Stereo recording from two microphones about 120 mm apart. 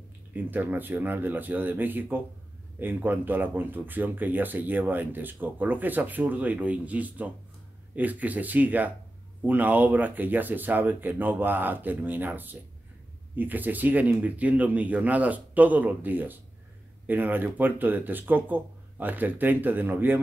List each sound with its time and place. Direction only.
0.3 s speech: 15° right (ahead or behind)